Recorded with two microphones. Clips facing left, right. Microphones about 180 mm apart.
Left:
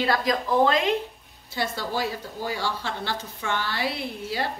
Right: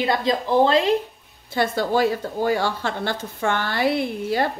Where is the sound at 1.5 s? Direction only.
55° right (ahead or behind).